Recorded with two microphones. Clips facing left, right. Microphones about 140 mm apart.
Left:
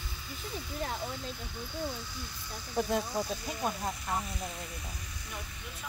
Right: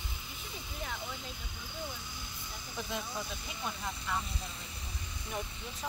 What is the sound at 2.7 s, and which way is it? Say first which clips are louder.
Speech: left 9 dB; 50° left (ahead or behind).